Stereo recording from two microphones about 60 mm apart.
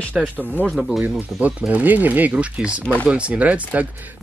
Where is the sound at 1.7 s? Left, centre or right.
Right.